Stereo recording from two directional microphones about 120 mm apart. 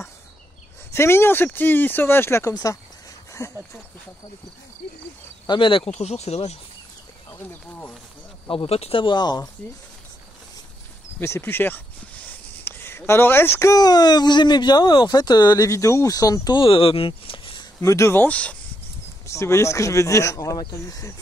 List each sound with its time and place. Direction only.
0.9 s speech: 20° left (ahead or behind)
5.5 s speech: 45° left (ahead or behind)
5.9 s speech: 65° left (ahead or behind)
8.5 s speech: 55° left (ahead or behind); by 9.5 s 35° left (ahead or behind)
11.1 s speech: 20° left (ahead or behind)
16.6 s speech: 50° left (ahead or behind)
17.7 s speech: 25° left (ahead or behind)
19.2 s speech: 25° left (ahead or behind)